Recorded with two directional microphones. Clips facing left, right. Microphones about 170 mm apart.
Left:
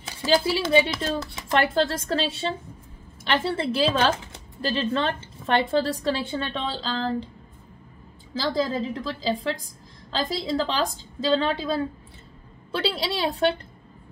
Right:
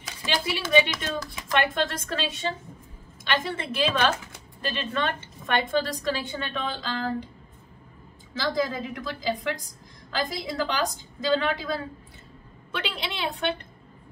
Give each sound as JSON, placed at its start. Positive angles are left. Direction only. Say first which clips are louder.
{"t": 0.0, "sound": "speech", "louder": "left 8 dB", "side_deg": 30}
{"t": 3.4, "sound": "a woman's voice", "louder": "left 4 dB", "side_deg": 30}
{"t": 8.4, "sound": "a woman's voice", "louder": "left 2 dB", "side_deg": 30}